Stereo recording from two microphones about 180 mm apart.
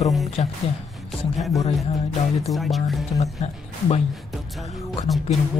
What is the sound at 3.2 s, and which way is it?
Speech, 40° left (ahead or behind).